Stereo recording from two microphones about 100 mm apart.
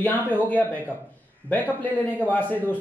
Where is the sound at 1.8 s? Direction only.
15° left (ahead or behind).